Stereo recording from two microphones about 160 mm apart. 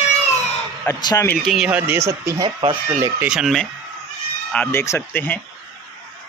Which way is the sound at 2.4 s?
30° right (ahead or behind).